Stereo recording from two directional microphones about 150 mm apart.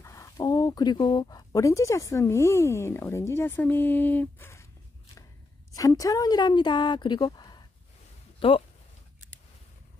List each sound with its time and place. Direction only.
0.0 s speech: 20° left (ahead or behind)
5.7 s speech: 25° left (ahead or behind)
8.4 s speech: 40° left (ahead or behind)